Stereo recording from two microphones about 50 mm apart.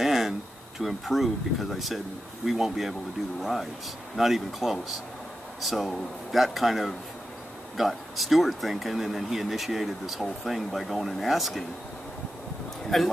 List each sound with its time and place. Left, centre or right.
0.0 s a sound: centre
0.7 s speech: centre
4.2 s speech: centre
12.9 s speech: centre